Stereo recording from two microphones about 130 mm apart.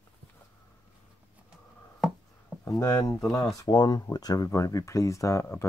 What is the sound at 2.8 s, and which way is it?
Speech, 25° left (ahead or behind).